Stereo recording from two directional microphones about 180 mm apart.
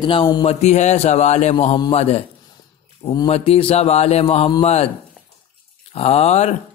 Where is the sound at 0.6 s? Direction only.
40° left (ahead or behind).